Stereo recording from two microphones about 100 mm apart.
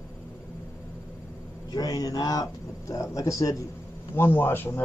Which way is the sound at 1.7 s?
40° left (ahead or behind).